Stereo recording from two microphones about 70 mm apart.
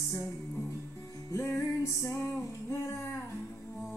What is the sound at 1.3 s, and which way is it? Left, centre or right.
Music, left.